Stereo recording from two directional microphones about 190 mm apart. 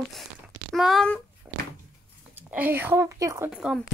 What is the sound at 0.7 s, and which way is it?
Speech, centre (ahead or behind).